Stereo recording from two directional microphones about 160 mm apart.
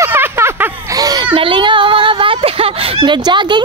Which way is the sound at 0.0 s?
15° right (ahead or behind).